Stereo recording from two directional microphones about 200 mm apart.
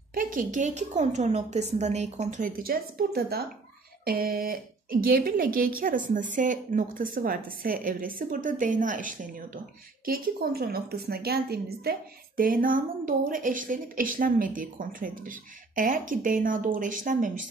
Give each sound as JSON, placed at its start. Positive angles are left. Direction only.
{"t": 0.1, "sound": "a woman's voice", "side_deg": -45}